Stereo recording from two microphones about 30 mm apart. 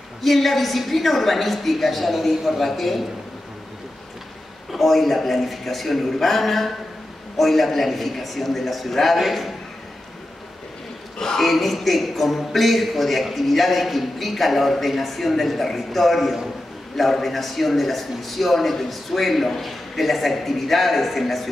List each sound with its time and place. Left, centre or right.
0.2 s a man's voice: centre
4.7 s a man's voice: centre
11.1 s a man's voice: centre
11.4 s a man's voice: centre